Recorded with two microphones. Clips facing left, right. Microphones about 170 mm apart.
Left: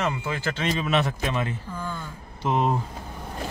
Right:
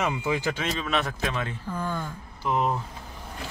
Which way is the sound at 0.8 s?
Centre (ahead or behind).